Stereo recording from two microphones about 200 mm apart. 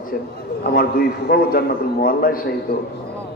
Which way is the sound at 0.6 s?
50° left (ahead or behind).